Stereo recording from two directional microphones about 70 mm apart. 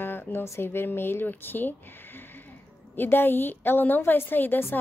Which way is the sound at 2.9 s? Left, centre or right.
Left.